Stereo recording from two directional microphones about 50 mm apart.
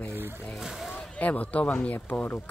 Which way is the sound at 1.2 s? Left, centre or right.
Left.